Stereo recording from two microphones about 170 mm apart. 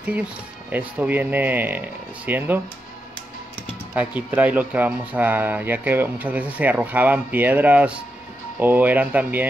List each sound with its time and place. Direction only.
0.7 s speech: 10° right (ahead or behind)
3.9 s speech: 10° right (ahead or behind)